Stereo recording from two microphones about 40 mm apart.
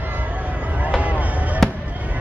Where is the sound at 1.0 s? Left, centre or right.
Right.